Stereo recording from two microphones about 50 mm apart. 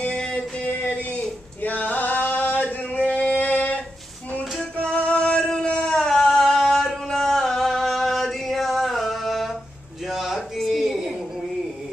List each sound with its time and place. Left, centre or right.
0.0 s music: centre
0.7 s singing: left
4.9 s music: left; by 9.6 s centre
10.0 s a sound: centre